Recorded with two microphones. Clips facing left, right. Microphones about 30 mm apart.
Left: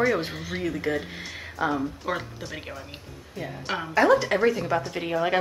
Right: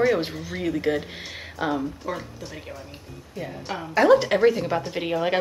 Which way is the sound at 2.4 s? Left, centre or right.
Left.